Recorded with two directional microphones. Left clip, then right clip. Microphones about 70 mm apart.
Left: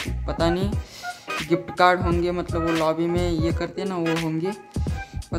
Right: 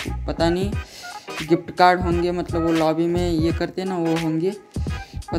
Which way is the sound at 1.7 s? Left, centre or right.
Right.